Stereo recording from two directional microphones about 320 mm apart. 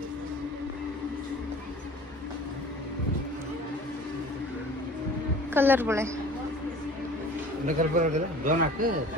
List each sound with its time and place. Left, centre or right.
5.5 s a woman's voice: centre
7.6 s speech: right